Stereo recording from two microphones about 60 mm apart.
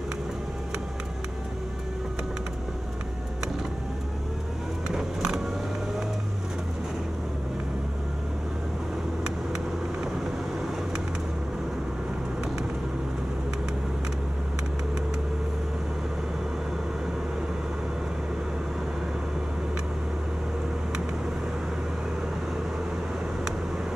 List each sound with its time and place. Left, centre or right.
4.9 s music: centre